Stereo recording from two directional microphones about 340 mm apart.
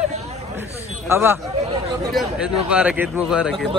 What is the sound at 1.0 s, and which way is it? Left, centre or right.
A man's voice, centre.